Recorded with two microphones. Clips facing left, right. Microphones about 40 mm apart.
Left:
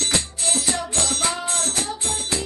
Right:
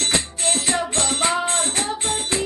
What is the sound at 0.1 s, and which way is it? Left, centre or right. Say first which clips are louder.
Music: right 2 dB; right.